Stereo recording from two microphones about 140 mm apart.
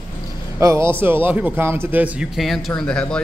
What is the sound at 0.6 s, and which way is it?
A man's voice, 20° right (ahead or behind).